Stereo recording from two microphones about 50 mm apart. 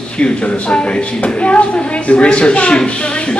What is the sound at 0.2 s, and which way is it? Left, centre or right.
A woman's voice, left.